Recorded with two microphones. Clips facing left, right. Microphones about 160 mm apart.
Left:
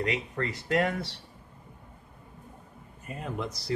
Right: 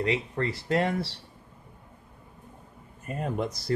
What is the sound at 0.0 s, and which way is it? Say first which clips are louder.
Speech: right 3 dB; 30° right (ahead or behind).